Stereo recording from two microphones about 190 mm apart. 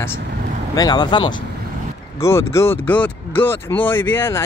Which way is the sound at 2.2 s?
15° left (ahead or behind).